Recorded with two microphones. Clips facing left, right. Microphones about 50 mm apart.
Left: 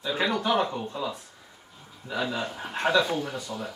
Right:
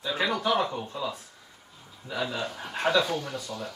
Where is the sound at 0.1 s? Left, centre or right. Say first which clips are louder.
Left 1 dB; left.